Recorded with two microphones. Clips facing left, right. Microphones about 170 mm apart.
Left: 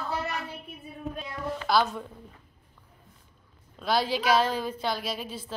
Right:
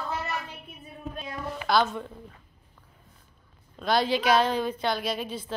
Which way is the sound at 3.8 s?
5° left (ahead or behind).